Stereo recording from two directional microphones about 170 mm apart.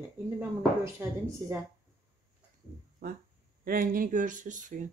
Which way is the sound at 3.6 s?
55° right (ahead or behind).